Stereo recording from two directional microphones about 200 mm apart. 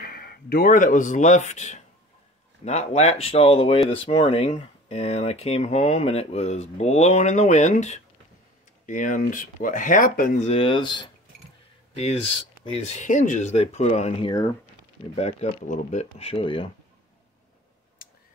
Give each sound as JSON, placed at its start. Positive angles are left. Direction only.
{"t": 0.0, "sound": "speech", "side_deg": 50}
{"t": 15.1, "sound": "speech", "side_deg": 35}